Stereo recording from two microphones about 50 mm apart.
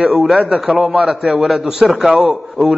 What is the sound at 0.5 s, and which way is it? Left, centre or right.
Speech, centre.